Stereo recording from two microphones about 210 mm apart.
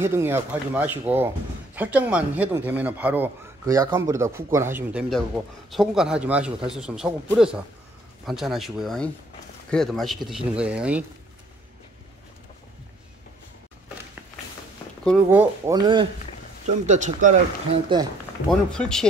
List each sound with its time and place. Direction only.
0.0 s speech: 10° right (ahead or behind)
5.1 s a man's voice: centre (ahead or behind)
15.2 s speech: 10° right (ahead or behind)
16.6 s speech: 35° right (ahead or behind)
18.5 s a man's voice: 5° left (ahead or behind)